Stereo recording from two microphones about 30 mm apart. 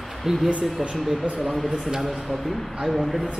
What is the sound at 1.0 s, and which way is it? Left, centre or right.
Speech, centre.